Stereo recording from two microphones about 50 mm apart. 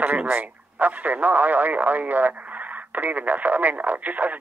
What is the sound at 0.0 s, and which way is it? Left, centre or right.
Speech, right.